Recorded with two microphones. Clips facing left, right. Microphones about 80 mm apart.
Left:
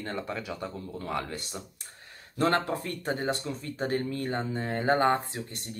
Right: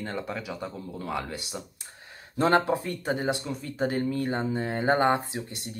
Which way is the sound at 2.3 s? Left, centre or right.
Right.